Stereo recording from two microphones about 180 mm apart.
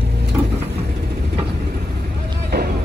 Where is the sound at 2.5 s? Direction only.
60° right (ahead or behind).